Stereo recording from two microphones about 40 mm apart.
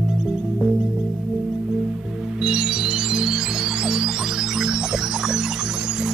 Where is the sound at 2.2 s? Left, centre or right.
Centre.